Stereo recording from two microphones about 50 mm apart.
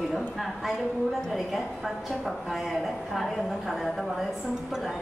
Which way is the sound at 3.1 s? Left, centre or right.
Centre.